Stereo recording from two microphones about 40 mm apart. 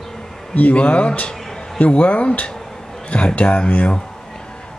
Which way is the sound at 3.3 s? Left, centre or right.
Left.